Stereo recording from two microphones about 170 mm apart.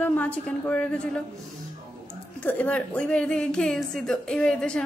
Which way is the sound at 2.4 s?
10° left (ahead or behind).